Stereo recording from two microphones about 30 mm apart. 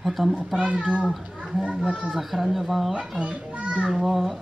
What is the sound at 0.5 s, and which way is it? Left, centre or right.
Speech, right.